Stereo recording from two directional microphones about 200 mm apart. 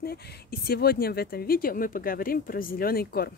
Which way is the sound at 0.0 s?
50° left (ahead or behind).